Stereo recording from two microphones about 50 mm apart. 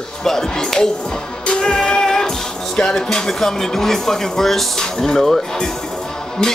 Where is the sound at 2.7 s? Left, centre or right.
Centre.